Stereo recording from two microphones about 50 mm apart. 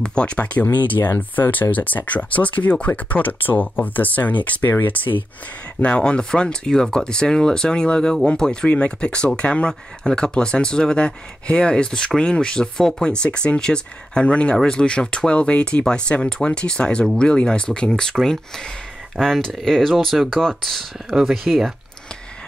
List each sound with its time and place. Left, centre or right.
0.0 s speech: left
5.8 s speech: left
21.1 s speech: centre